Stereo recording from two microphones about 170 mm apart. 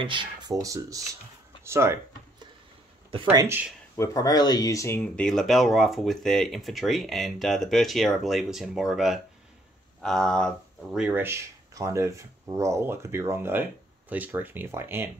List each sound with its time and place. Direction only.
0.0 s speech: 30° right (ahead or behind)
3.1 s speech: 30° right (ahead or behind)
3.4 s speech: 10° right (ahead or behind)
3.9 s speech: 20° left (ahead or behind); by 15.0 s 15° right (ahead or behind)